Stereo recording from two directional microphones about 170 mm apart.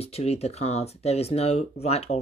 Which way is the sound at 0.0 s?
40° left (ahead or behind).